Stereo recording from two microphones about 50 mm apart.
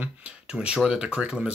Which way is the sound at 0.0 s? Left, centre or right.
Right.